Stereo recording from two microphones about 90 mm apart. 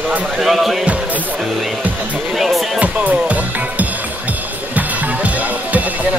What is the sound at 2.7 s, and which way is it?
Music, 15° right (ahead or behind).